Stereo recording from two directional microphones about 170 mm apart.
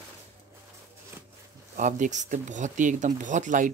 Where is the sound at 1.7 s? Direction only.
50° right (ahead or behind).